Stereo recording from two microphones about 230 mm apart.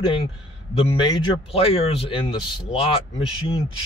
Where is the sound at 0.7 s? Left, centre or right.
Left.